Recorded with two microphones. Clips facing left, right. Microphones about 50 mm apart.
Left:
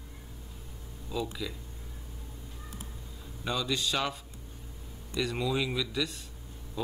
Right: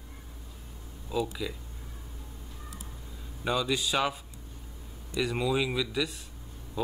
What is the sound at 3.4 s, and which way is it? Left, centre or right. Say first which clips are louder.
Speech: right 3 dB; centre.